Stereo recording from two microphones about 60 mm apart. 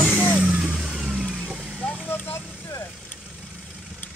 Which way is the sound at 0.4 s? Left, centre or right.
Centre.